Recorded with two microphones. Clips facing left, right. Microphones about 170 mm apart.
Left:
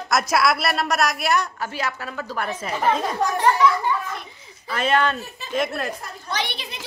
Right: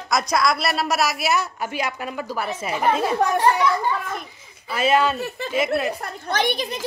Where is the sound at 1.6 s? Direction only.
15° right (ahead or behind).